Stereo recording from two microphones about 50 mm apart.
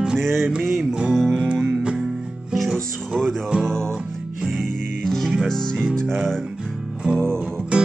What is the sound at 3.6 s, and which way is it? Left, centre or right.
Music, centre.